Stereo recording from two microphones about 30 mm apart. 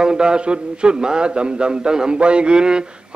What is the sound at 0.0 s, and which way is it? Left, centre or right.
A man's voice, right.